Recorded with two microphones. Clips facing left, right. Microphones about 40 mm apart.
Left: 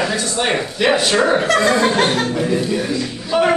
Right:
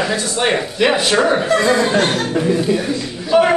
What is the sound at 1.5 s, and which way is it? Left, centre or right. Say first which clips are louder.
Speech: right 2 dB; centre.